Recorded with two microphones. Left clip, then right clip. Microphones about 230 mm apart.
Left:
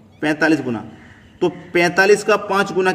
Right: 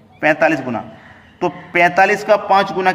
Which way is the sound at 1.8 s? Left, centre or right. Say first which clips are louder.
Right 2 dB; centre.